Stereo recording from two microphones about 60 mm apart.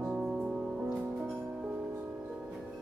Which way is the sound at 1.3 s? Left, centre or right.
Right.